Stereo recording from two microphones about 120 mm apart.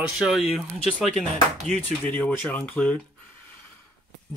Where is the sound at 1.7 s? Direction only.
15° left (ahead or behind).